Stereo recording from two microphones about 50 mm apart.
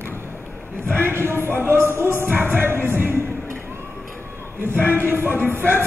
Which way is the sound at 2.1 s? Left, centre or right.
Right.